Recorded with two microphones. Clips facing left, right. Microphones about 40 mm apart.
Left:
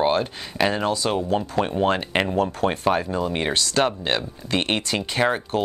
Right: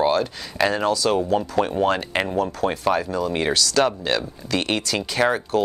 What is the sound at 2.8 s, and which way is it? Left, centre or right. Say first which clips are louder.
Speech: even; centre.